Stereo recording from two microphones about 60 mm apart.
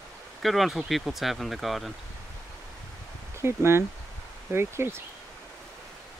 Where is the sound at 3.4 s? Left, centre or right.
Right.